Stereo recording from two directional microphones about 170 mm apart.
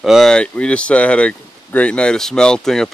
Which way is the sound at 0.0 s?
Centre (ahead or behind).